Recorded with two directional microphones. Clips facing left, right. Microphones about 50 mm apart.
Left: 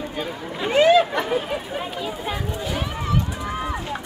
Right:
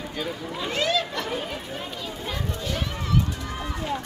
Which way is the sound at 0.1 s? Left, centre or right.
Left.